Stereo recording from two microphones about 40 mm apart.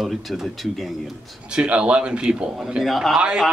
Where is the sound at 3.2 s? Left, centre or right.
Right.